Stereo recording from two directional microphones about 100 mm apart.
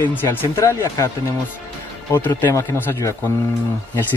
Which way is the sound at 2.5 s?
30° left (ahead or behind).